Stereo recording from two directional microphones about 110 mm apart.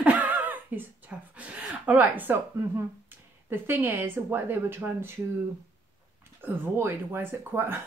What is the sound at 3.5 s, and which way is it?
A woman's voice, 20° right (ahead or behind).